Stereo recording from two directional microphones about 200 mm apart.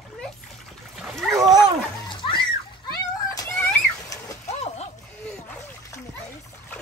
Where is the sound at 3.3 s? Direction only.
15° left (ahead or behind).